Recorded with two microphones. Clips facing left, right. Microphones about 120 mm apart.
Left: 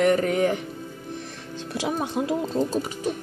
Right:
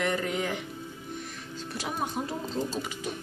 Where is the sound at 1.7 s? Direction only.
90° left.